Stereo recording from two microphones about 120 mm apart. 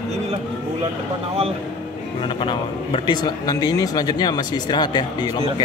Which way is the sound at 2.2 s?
45° left (ahead or behind).